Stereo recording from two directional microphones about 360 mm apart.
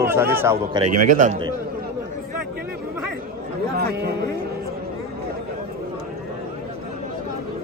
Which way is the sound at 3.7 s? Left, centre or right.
Right.